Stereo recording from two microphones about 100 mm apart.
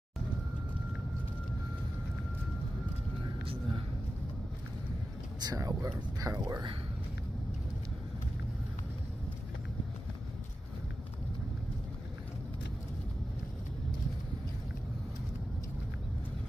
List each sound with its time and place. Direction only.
5.4 s speech: 40° right (ahead or behind)